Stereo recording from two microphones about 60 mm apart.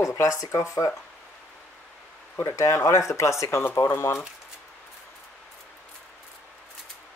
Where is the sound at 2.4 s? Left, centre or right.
Left.